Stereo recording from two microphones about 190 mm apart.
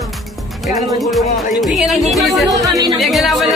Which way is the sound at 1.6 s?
Centre (ahead or behind).